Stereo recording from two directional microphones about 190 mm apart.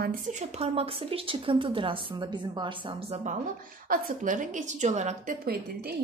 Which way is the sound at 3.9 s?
45° right (ahead or behind).